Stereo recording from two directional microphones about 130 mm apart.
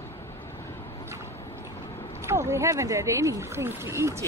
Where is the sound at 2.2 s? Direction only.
20° right (ahead or behind).